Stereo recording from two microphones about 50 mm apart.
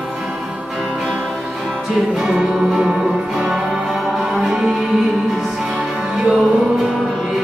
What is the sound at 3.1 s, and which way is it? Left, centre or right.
Music, right.